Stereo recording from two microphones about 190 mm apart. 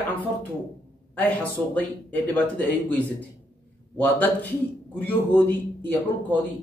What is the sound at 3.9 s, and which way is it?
A man's voice, 10° left (ahead or behind).